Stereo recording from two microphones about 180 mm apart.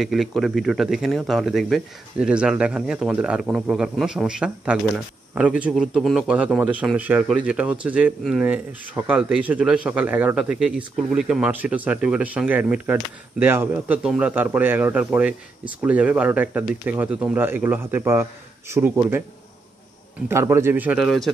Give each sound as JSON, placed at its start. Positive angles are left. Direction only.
{"t": 0.0, "sound": "speech", "side_deg": 0}
{"t": 20.2, "sound": "speech", "side_deg": -15}